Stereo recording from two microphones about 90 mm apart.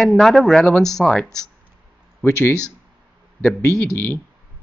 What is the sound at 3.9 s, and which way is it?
Speech, 20° left (ahead or behind).